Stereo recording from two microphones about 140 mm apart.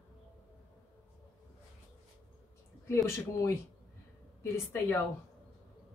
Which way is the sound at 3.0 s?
20° left (ahead or behind).